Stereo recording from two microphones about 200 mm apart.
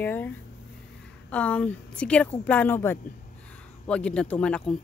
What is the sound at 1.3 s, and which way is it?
A woman's voice, 5° left (ahead or behind).